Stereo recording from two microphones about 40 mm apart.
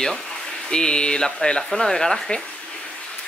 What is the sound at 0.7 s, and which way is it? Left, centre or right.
Speech, left.